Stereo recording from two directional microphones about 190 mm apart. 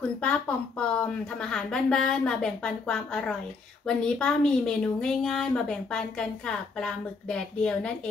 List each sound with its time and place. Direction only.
0.2 s a woman's voice: 5° left (ahead or behind)